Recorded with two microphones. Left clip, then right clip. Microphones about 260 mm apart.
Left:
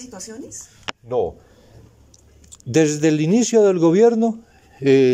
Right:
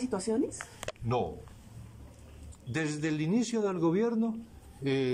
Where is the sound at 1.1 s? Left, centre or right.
Left.